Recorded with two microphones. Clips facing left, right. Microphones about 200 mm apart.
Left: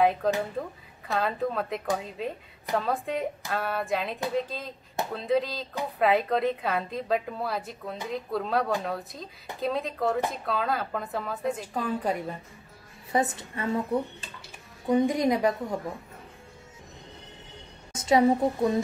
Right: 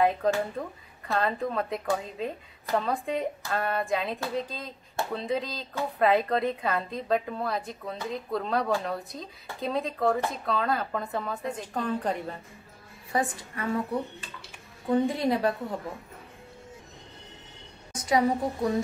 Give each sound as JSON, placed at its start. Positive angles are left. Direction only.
{"t": 0.0, "sound": "a woman's voice", "side_deg": 0}
{"t": 13.1, "sound": "a woman's voice", "side_deg": 25}
{"t": 14.9, "sound": "a woman's voice", "side_deg": 15}
{"t": 17.9, "sound": "a woman's voice", "side_deg": 25}